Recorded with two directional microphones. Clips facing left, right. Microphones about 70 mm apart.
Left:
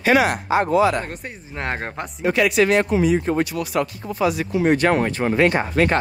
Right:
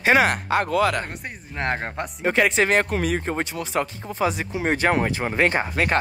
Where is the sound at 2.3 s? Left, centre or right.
Right.